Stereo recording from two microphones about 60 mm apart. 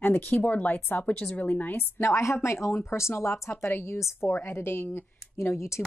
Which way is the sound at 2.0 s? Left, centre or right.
Left.